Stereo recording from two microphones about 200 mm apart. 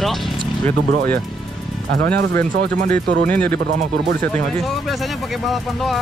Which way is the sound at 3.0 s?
50° right (ahead or behind).